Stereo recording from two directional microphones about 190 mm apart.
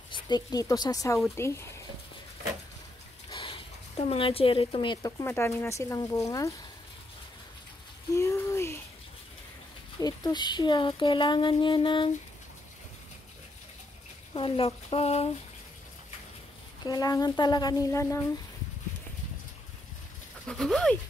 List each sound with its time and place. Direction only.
0.1 s speech: 20° left (ahead or behind)
3.3 s a sound: 30° left (ahead or behind)
4.1 s speech: 30° left (ahead or behind)
8.1 s rain: 15° left (ahead or behind)
9.9 s speech: 20° left (ahead or behind)
14.3 s speech: 30° left (ahead or behind)
16.8 s speech: 20° left (ahead or behind)
20.4 s speech: 5° left (ahead or behind)